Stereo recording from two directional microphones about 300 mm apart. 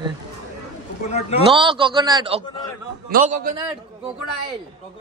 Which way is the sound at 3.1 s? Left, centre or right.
Right.